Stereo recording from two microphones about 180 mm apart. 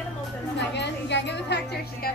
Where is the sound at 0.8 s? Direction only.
70° left (ahead or behind).